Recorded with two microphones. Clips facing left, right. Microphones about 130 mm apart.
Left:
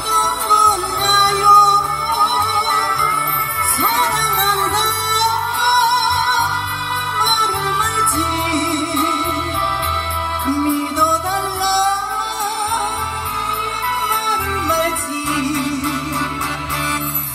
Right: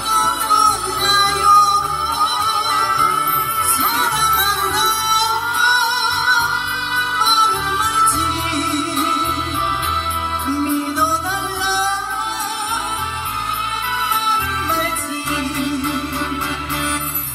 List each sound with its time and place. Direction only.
0.1 s music: 40° left (ahead or behind)
4.0 s music: 40° left (ahead or behind)
10.4 s music: 40° left (ahead or behind)
15.4 s music: 40° left (ahead or behind)